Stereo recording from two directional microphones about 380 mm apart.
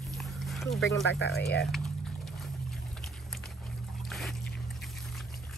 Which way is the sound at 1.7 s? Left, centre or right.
Centre.